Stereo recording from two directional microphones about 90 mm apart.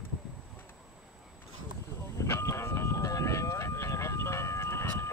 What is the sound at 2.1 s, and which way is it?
Vehicle, 30° left (ahead or behind).